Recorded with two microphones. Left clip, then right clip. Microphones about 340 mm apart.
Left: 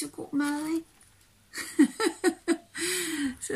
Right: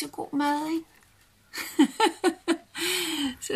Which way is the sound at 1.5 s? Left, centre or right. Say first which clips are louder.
Right 2 dB; centre.